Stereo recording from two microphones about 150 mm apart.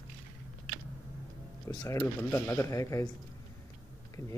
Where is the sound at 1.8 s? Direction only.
20° left (ahead or behind).